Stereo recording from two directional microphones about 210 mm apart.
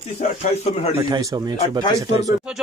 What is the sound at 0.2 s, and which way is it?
Speech, 35° left (ahead or behind).